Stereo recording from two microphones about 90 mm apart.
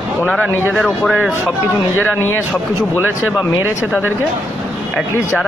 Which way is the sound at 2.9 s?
15° right (ahead or behind).